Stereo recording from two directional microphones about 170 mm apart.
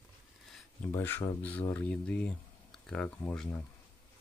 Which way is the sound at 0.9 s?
15° left (ahead or behind).